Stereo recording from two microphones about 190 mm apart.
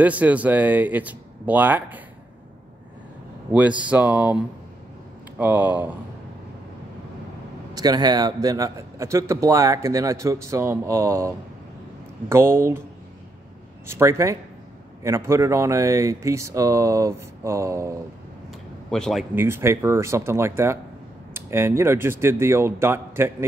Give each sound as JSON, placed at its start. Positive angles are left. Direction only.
{"t": 0.0, "sound": "a man's voice", "side_deg": -10}
{"t": 3.9, "sound": "a man's voice", "side_deg": -10}
{"t": 5.4, "sound": "a man's voice", "side_deg": -10}
{"t": 7.7, "sound": "a man's voice", "side_deg": -20}
{"t": 13.8, "sound": "a man's voice", "side_deg": -15}
{"t": 18.5, "sound": "a sound", "side_deg": 5}
{"t": 19.3, "sound": "a man's voice", "side_deg": -10}